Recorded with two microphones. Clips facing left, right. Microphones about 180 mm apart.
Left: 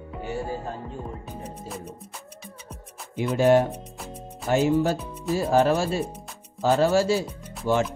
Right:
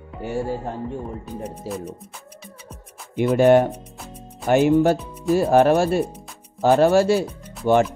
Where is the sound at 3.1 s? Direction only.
60° right (ahead or behind).